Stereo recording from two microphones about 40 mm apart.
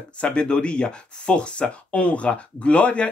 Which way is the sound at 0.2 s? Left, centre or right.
Left.